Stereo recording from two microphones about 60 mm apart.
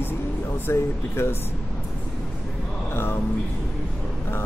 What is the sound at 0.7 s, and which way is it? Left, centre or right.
Speech, left.